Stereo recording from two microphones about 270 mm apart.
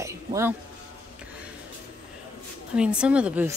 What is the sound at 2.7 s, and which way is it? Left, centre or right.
Speech, centre.